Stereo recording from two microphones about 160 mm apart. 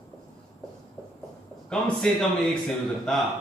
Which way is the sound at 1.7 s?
Centre (ahead or behind).